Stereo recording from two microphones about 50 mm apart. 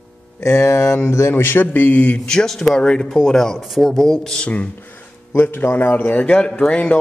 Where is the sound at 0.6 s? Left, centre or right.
Left.